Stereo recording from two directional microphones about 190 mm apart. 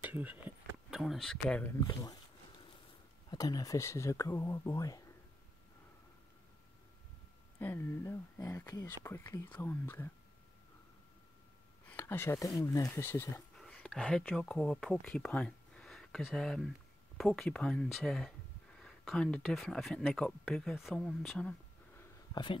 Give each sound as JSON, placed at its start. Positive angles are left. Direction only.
{"t": 0.0, "sound": "speech", "side_deg": -10}
{"t": 1.8, "sound": "speech", "side_deg": 20}
{"t": 3.3, "sound": "speech", "side_deg": 20}
{"t": 7.5, "sound": "speech", "side_deg": 10}
{"t": 11.9, "sound": "speech", "side_deg": 10}
{"t": 13.6, "sound": "speech", "side_deg": 0}
{"t": 22.3, "sound": "speech", "side_deg": 25}